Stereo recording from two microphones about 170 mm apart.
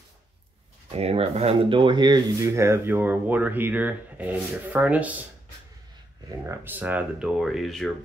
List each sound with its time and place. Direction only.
0.9 s speech: 35° right (ahead or behind); by 5.2 s 10° right (ahead or behind)
6.2 s speech: 15° right (ahead or behind); by 7.9 s centre (ahead or behind)